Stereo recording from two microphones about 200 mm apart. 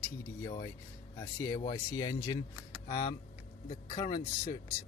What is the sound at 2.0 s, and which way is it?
Speech, 25° left (ahead or behind).